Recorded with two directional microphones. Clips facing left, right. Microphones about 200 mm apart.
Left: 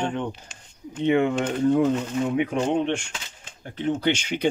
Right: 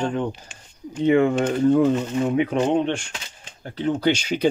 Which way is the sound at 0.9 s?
35° right (ahead or behind).